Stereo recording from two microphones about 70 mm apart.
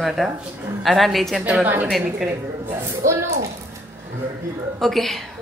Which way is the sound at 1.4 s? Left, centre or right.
Centre.